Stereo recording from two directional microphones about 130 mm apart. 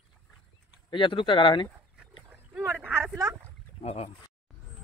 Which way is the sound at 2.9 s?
20° right (ahead or behind).